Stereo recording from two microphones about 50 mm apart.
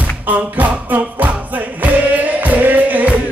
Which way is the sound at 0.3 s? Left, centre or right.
Right.